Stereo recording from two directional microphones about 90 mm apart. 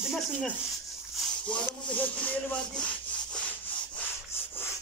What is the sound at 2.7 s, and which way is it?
Sawing, 10° left (ahead or behind).